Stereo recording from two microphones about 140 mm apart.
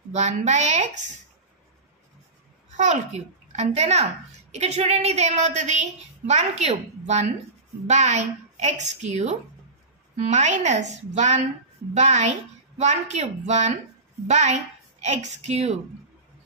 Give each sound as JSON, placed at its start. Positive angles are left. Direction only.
{"t": 0.1, "sound": "a woman's voice", "side_deg": -55}
{"t": 2.8, "sound": "a child's voice", "side_deg": -55}
{"t": 7.8, "sound": "a child's voice", "side_deg": -55}